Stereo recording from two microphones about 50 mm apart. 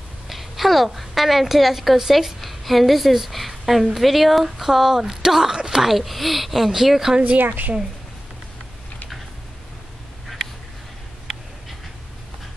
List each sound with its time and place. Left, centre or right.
0.3 s a woman's voice: centre
7.3 s a woman's voice: right